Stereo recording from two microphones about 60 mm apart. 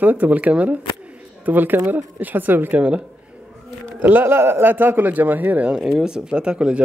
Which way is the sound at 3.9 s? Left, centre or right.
Right.